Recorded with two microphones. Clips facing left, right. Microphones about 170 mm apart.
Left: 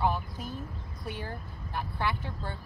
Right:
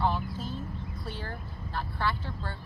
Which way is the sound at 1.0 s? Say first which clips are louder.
Left 4 dB; 15° left (ahead or behind).